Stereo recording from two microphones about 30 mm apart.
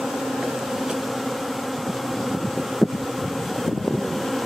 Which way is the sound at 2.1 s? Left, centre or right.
Centre.